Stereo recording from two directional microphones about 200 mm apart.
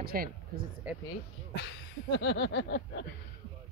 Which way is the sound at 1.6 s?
65° left (ahead or behind).